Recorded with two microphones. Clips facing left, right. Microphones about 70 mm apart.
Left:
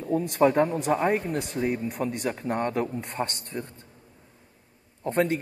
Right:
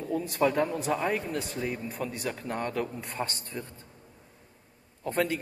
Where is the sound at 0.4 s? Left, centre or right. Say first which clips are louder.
Left 5 dB; left.